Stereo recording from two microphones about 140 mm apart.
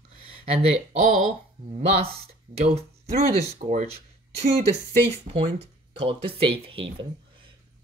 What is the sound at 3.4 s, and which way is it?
Speech, 55° right (ahead or behind).